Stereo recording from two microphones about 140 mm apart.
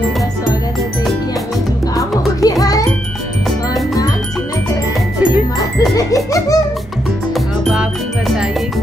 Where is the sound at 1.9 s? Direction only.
25° left (ahead or behind).